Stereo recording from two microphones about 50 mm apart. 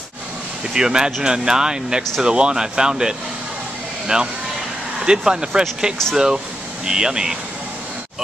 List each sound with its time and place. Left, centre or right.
0.7 s speech: centre